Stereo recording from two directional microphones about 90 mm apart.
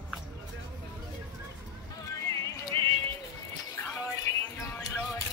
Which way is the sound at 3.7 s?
40° left (ahead or behind).